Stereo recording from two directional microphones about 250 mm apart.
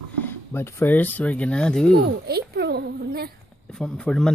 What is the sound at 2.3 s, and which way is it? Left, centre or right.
A child's voice, right.